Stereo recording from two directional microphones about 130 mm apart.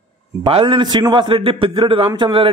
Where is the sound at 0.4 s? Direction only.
40° right (ahead or behind).